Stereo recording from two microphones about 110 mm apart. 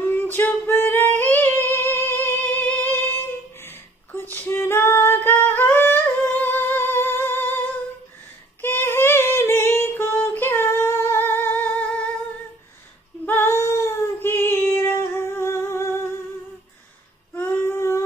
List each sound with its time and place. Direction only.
0.1 s singing: 15° left (ahead or behind)
8.5 s female singing: 20° left (ahead or behind)
13.2 s child singing: 20° left (ahead or behind)
17.4 s child singing: 25° left (ahead or behind)